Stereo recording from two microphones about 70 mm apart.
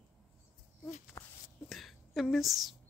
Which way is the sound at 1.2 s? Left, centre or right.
Left.